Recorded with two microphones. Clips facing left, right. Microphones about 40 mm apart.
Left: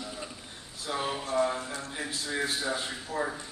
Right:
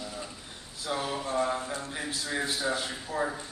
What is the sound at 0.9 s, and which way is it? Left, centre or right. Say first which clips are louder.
Speech: right 1 dB; centre.